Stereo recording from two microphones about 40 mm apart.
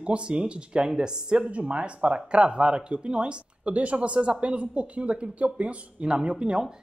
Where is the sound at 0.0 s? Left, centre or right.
Right.